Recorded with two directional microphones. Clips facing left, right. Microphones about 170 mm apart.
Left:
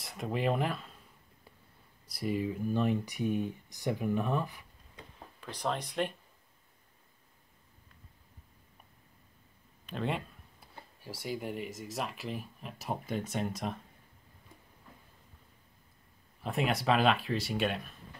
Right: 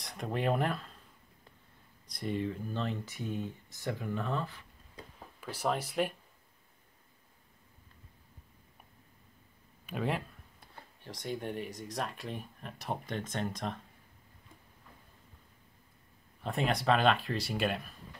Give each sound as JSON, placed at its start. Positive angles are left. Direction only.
{"t": 0.0, "sound": "speech", "side_deg": 0}
{"t": 2.0, "sound": "speech", "side_deg": 5}
{"t": 5.4, "sound": "speech", "side_deg": -5}
{"t": 9.8, "sound": "speech", "side_deg": -5}
{"t": 16.4, "sound": "speech", "side_deg": 0}